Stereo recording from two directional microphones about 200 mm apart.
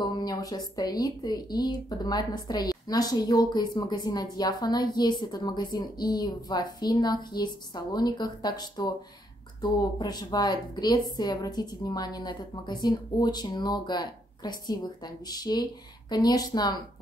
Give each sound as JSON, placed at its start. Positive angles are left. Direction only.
{"t": 0.0, "sound": "speech", "side_deg": 20}